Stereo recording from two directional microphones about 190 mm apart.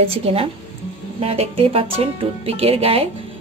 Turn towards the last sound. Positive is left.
turn(degrees=-30)  # may be behind; listen again after turning